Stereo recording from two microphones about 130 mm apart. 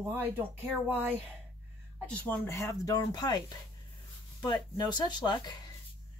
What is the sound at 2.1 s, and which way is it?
Speech, 10° left (ahead or behind).